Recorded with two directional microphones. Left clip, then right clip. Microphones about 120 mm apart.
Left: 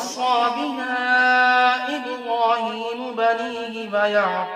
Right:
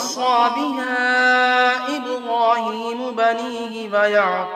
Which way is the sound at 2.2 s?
35° right (ahead or behind).